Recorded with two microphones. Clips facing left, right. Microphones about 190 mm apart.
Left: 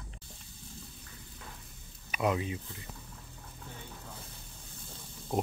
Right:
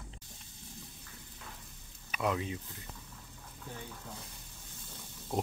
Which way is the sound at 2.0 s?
10° left (ahead or behind).